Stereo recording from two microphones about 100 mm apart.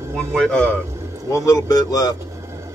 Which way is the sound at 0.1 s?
10° left (ahead or behind).